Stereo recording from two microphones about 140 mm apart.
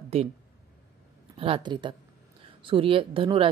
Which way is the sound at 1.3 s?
40° right (ahead or behind).